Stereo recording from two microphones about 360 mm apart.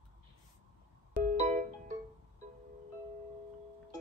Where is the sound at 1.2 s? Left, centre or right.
Centre.